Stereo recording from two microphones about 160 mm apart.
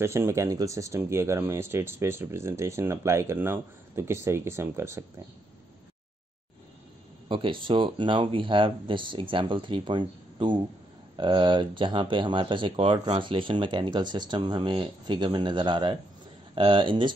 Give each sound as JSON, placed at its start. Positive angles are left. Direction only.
{"t": 0.0, "sound": "speech", "side_deg": -15}
{"t": 7.2, "sound": "speech", "side_deg": -30}